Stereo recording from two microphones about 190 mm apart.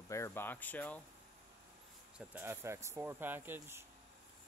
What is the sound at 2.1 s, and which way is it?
Speech, 10° right (ahead or behind).